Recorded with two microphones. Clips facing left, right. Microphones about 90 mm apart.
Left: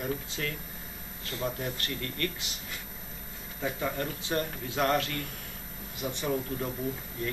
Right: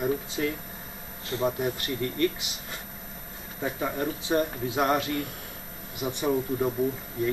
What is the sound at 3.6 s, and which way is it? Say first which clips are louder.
Speech: right 3 dB; 20° right (ahead or behind).